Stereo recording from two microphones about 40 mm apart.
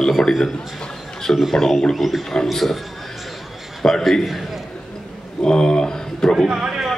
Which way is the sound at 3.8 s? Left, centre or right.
Centre.